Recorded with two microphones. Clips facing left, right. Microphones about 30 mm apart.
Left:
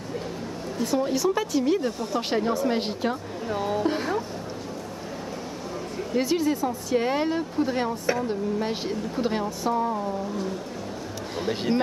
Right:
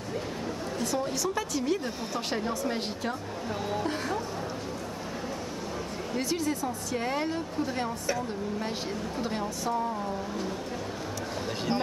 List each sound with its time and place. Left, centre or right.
0.8 s speech: centre
3.4 s a sound: centre
6.1 s speech: centre